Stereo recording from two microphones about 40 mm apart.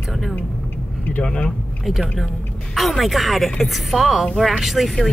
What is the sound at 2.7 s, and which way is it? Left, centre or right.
Speech, centre.